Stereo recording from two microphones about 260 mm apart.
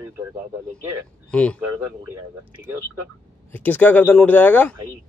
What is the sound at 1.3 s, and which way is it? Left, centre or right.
Speech, centre.